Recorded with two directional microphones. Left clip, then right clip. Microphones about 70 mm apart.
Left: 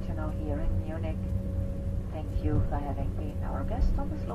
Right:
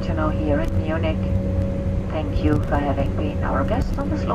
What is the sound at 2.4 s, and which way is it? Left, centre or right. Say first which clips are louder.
Speech: right 12 dB; right.